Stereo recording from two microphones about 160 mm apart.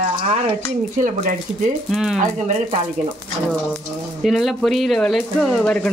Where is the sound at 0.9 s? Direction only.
50° right (ahead or behind).